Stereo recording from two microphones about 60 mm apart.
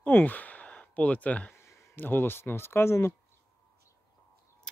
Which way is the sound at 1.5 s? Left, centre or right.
Left.